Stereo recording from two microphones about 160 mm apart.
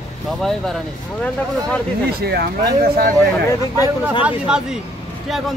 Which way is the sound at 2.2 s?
85° right.